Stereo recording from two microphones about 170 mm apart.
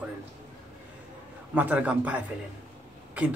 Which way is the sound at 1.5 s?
10° right (ahead or behind).